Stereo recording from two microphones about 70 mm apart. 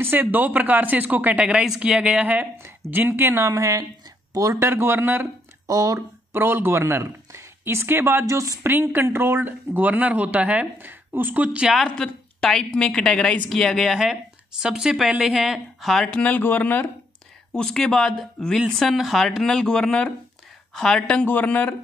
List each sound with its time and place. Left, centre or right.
0.0 s speech: right; by 2.2 s centre
2.6 s speech: right
5.7 s speech: right
5.9 s speech: right
8.3 s speech: right
9.0 s speech: right
11.6 s a woman's voice: centre
11.9 s a woman's voice: centre
16.2 s speech: left
17.5 s a woman's voice: centre